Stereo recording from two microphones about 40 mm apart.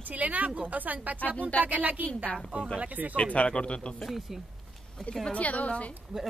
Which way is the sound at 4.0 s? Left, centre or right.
Centre.